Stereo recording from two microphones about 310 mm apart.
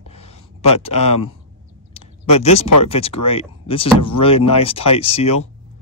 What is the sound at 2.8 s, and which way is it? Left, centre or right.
Speech, centre.